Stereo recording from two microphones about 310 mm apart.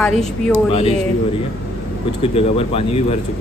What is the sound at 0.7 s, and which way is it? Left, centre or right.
Speech, centre.